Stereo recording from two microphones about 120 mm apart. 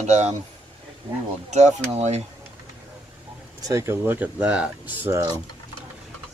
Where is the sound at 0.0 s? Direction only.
70° right (ahead or behind).